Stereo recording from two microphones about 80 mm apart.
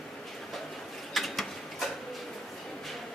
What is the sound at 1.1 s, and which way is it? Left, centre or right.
Mechanisms, centre.